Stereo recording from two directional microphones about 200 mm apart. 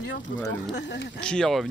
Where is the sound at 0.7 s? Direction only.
60° left (ahead or behind).